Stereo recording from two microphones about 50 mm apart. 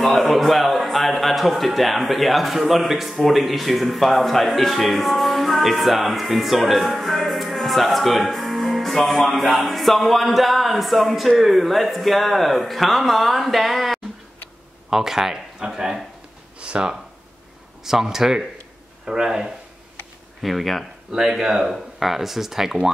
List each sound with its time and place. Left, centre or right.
0.0 s a man's voice: centre; by 16.9 s right
17.8 s speech: centre
20.4 s speech: centre